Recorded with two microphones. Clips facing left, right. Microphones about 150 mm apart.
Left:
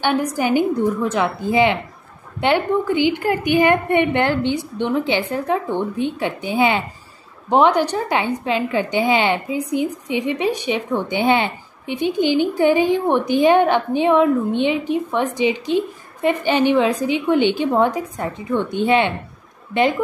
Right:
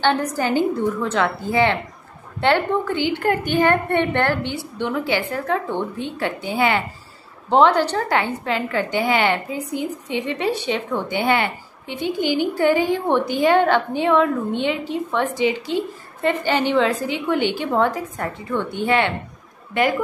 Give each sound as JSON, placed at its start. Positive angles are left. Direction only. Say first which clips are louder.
{"t": 0.0, "sound": "a woman's voice", "louder": "left 1 dB", "side_deg": 10}